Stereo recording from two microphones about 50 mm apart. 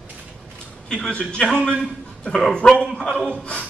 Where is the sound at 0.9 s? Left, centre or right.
Centre.